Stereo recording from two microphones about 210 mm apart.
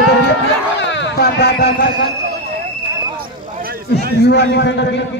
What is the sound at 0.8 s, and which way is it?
Speech, 55° left (ahead or behind).